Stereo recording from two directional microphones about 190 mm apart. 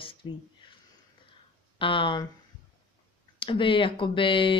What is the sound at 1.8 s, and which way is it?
Speech, 25° left (ahead or behind).